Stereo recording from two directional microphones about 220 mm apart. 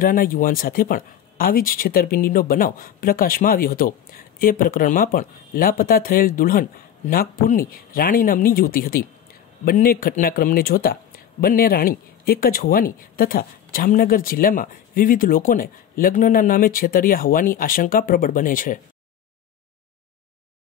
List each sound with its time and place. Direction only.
0.0 s speech: 40° left (ahead or behind)